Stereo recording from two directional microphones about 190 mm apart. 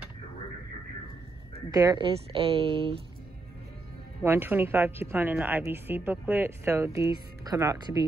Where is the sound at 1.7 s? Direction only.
20° right (ahead or behind).